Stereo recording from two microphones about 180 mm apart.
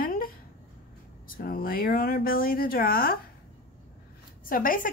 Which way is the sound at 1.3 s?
55° left (ahead or behind).